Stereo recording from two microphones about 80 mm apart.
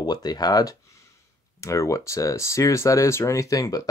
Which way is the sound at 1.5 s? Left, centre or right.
Left.